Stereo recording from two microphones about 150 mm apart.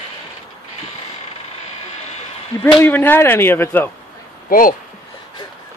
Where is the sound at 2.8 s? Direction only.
15° left (ahead or behind).